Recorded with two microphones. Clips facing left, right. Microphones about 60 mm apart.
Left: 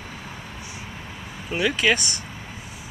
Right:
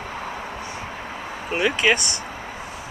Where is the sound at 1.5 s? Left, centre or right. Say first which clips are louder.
Right 1 dB; right.